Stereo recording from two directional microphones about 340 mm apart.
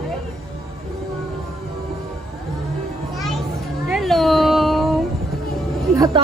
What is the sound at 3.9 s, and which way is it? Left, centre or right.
Cat, centre.